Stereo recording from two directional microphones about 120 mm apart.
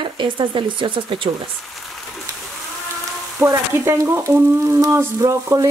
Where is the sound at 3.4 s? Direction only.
20° right (ahead or behind).